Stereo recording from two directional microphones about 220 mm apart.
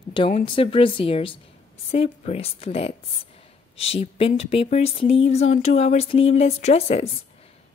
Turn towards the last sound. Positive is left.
turn(degrees=30)  # may be behind; listen again after turning